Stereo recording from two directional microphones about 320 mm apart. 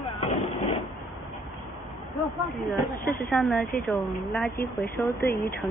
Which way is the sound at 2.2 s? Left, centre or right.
Centre.